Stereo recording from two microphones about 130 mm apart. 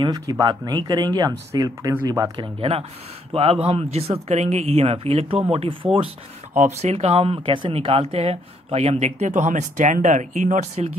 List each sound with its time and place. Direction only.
0.0 s speech: 30° right (ahead or behind)
2.4 s speech: 45° right (ahead or behind)
6.6 s speech: 60° right (ahead or behind)